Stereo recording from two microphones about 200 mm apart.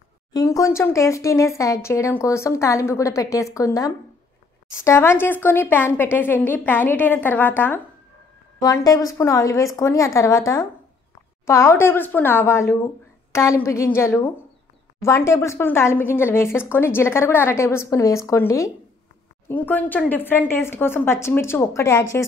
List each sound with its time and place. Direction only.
0.3 s speech: 15° left (ahead or behind)